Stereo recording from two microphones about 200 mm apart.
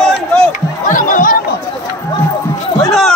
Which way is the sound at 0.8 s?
40° left (ahead or behind).